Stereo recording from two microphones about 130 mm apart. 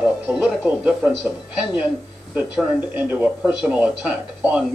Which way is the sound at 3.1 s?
10° right (ahead or behind).